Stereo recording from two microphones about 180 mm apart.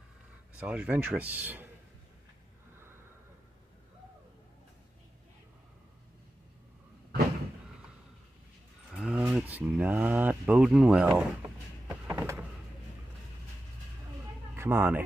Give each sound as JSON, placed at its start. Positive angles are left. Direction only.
{"t": 0.6, "sound": "speech", "side_deg": -10}
{"t": 8.9, "sound": "a sound", "side_deg": -5}
{"t": 14.5, "sound": "cat", "side_deg": -10}